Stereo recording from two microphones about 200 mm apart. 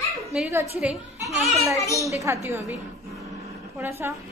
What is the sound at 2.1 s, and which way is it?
Speech, 15° right (ahead or behind).